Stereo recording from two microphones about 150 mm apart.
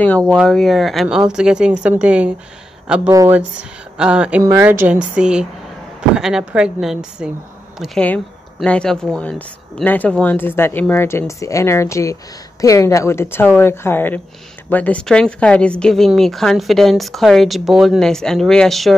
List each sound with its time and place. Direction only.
0.0 s a woman's voice: 10° left (ahead or behind); by 2.3 s 10° right (ahead or behind)
3.1 s speech: 20° right (ahead or behind)
3.3 s a woman's voice: 5° right (ahead or behind)